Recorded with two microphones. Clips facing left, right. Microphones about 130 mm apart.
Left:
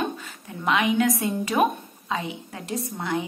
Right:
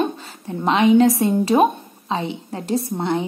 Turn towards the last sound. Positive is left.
turn(degrees=-30)  # may be behind; listen again after turning